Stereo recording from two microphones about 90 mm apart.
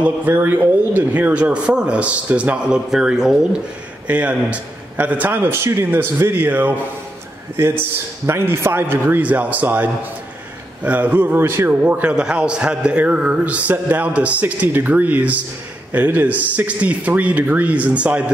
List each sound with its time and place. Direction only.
0.0 s a man's voice: 15° right (ahead or behind)